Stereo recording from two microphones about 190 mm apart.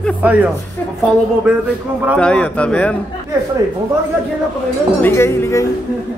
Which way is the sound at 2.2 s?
5° left (ahead or behind).